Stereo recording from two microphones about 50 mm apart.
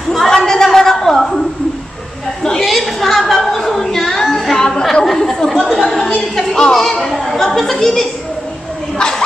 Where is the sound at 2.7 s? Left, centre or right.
Centre.